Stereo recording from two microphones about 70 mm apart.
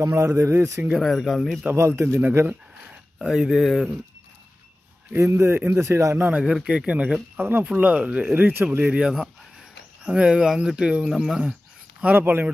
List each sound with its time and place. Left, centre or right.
0.1 s speech: right
0.9 s speech: centre
1.7 s speech: right
2.9 s speech: centre
5.2 s speech: right
6.1 s speech: right
6.4 s speech: centre
6.9 s speech: centre
7.6 s speech: centre
8.8 s speech: centre
12.0 s speech: right